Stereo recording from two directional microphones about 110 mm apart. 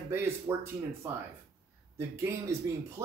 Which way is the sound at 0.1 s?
20° right (ahead or behind).